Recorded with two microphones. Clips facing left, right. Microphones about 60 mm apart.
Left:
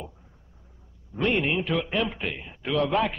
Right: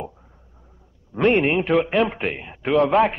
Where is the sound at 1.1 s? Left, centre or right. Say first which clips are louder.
Right 7 dB; right.